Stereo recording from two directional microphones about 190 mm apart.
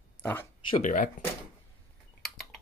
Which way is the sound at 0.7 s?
40° left (ahead or behind).